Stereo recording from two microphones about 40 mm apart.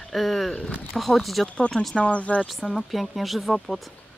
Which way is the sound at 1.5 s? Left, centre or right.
Left.